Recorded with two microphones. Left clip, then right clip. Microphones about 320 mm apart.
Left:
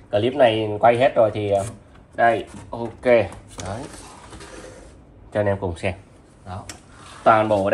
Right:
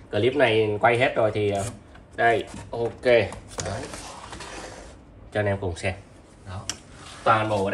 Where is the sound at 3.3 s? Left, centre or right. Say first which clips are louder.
Even; centre.